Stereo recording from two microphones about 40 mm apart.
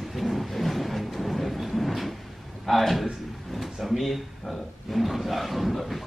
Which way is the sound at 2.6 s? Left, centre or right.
Centre.